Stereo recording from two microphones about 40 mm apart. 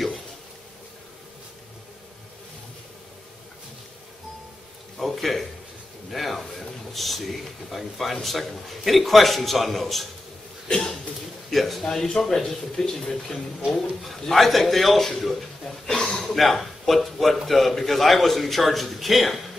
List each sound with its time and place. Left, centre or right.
4.9 s a sound: centre
6.0 s a man's voice: centre
10.7 s cough: centre
11.5 s speech: centre
13.7 s a man's voice: centre